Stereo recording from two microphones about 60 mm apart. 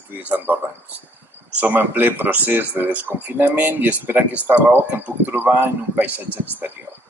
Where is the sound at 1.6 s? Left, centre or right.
Right.